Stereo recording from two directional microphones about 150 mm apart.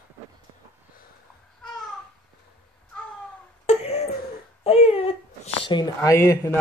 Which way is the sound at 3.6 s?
40° left (ahead or behind).